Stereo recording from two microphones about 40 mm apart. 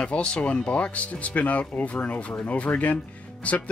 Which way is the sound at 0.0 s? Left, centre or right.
Left.